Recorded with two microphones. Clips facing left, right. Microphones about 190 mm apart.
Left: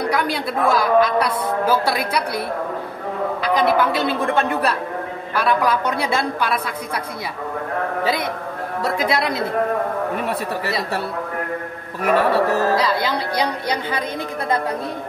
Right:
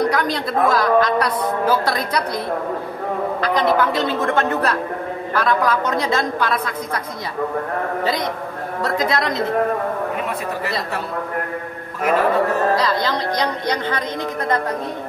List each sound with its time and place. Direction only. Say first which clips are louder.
0.1 s a woman's voice: right 1 dB; 10° left (ahead or behind)
8.8 s a woman's voice: even; 10° left (ahead or behind)
12.2 s music: left 1 dB; 70° left (ahead or behind)
12.7 s a woman's voice: even; 10° left (ahead or behind)